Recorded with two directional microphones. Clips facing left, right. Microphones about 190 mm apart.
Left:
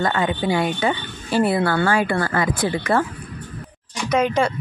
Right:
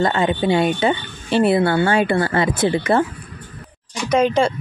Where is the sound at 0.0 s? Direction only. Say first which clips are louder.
Right 3 dB; 25° right (ahead or behind).